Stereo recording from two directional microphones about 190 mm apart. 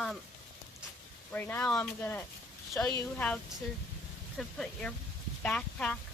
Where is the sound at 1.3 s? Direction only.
10° left (ahead or behind).